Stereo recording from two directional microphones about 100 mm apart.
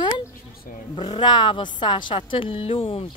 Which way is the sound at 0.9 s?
55° left (ahead or behind).